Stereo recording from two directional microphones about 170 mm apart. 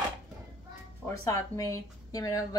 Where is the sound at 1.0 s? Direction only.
20° left (ahead or behind).